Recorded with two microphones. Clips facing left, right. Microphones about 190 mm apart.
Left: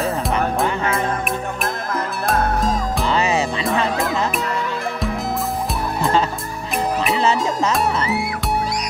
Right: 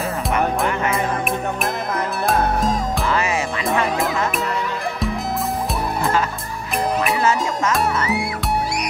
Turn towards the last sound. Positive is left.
turn(degrees=25)  # may be behind; listen again after turning